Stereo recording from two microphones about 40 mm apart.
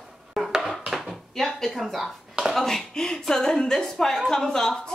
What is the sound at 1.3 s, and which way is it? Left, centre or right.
Speech, centre.